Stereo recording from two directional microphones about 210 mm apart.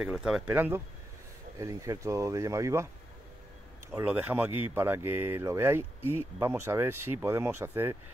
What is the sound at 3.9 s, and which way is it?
Speech, 10° right (ahead or behind).